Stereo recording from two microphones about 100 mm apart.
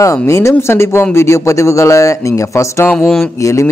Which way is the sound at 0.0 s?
30° left (ahead or behind).